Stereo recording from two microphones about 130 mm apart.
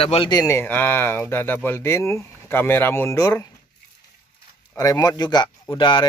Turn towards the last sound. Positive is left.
turn(degrees=35)  # may be behind; listen again after turning